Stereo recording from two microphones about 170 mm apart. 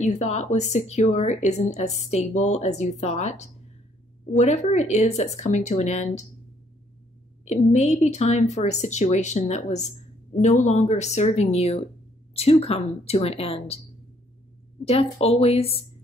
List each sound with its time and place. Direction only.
0.0 s speech: 45° left (ahead or behind)
7.4 s speech: 45° left (ahead or behind)
14.9 s speech: 35° left (ahead or behind)